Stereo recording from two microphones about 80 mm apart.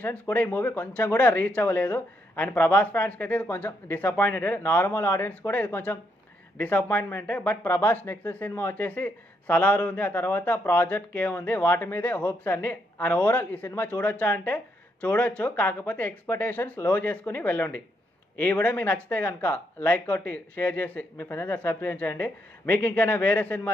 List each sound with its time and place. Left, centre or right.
0.0 s speech: centre